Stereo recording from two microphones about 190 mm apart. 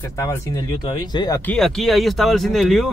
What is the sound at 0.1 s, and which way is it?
Speech, 15° left (ahead or behind).